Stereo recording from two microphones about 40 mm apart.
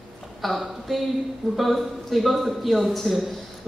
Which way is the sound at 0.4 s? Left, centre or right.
Centre.